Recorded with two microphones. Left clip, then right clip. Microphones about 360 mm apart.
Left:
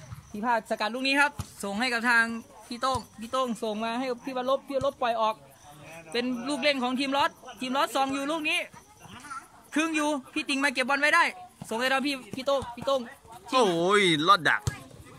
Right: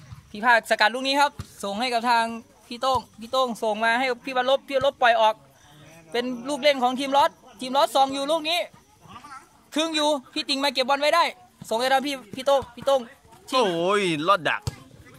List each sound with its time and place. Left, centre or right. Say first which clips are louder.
0.3 s a man's voice: right 8 dB; right
13.5 s speech: right 1 dB; centre